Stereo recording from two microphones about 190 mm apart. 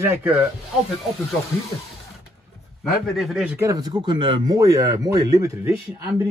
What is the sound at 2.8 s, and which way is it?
Speech, centre (ahead or behind).